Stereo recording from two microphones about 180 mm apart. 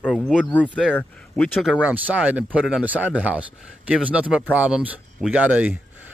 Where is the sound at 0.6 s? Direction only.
5° right (ahead or behind).